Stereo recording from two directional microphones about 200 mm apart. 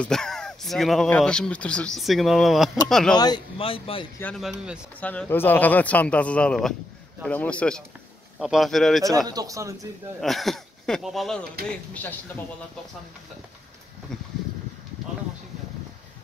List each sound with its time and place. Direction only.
0.0 s speech: 5° left (ahead or behind)
3.2 s speech: 20° left (ahead or behind)
4.2 s speech: 5° left (ahead or behind)
9.3 s speech: 15° right (ahead or behind)
10.2 s speech: centre (ahead or behind)
14.1 s a sound: 5° left (ahead or behind)